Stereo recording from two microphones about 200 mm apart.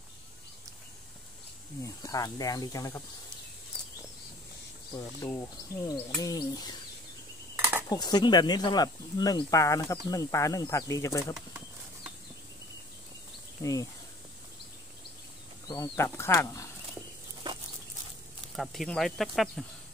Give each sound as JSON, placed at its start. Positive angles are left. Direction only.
{"t": 1.8, "sound": "speech", "side_deg": 15}
{"t": 4.9, "sound": "speech", "side_deg": 15}
{"t": 7.5, "sound": "cutlery", "side_deg": -10}
{"t": 7.9, "sound": "speech", "side_deg": 20}
{"t": 15.7, "sound": "speech", "side_deg": 15}
{"t": 17.4, "sound": "dog", "side_deg": -25}
{"t": 18.6, "sound": "speech", "side_deg": 0}